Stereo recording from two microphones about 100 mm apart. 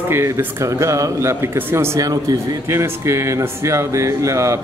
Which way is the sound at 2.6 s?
25° right (ahead or behind).